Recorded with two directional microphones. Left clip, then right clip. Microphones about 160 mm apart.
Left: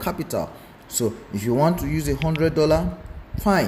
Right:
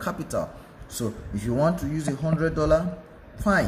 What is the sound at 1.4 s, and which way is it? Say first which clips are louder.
A man's voice: left 4 dB; 15° left (ahead or behind).